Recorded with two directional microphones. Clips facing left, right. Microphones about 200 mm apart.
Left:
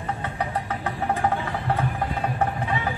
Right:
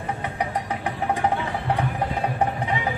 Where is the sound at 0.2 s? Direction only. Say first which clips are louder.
Right 1 dB; 15° right (ahead or behind).